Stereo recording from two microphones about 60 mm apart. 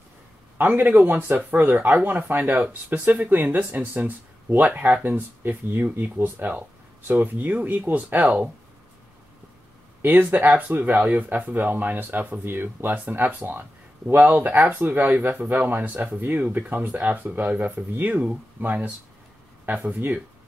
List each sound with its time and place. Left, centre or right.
0.6 s speech: right
10.0 s speech: right